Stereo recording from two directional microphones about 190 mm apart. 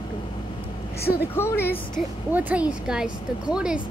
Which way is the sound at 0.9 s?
55° left (ahead or behind).